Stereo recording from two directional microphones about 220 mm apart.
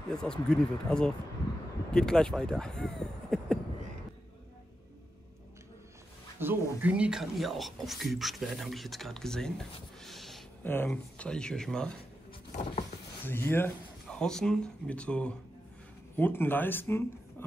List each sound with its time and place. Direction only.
0.1 s speech: 5° left (ahead or behind)
6.4 s speech: 10° right (ahead or behind)
12.3 s a sound: 30° left (ahead or behind)
13.2 s speech: 10° left (ahead or behind)